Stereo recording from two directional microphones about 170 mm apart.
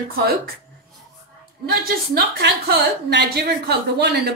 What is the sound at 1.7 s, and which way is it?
A woman's voice, 70° right (ahead or behind).